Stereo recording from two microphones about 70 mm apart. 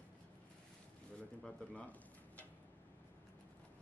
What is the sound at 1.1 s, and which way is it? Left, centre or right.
Speech, centre.